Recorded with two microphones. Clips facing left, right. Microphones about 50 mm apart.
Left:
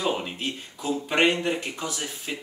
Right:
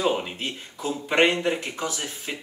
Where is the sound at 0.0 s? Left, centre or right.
Centre.